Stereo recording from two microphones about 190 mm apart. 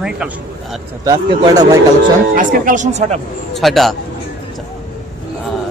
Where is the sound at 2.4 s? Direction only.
45° right (ahead or behind).